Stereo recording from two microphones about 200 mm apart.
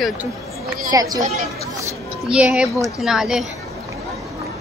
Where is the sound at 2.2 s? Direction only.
5° right (ahead or behind).